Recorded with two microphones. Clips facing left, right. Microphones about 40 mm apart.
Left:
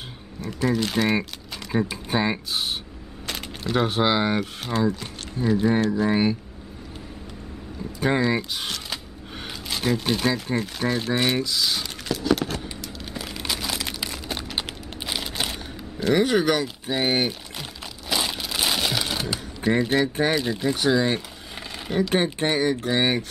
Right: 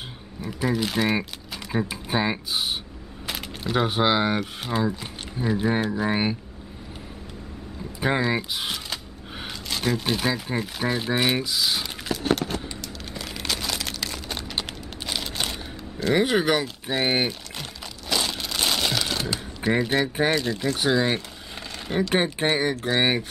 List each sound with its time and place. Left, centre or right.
0.4 s speech: centre
8.0 s speech: centre
12.8 s a sound: centre
16.0 s speech: centre
18.1 s a sound: centre
20.2 s speech: centre
20.7 s speech: centre